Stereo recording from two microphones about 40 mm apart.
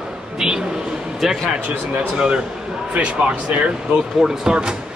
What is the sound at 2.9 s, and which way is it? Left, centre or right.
Speech, right.